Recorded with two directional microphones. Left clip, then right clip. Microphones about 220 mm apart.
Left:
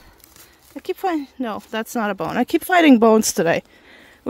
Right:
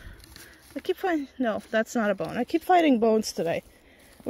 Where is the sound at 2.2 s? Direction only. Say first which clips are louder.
Left 4 dB; 40° left (ahead or behind).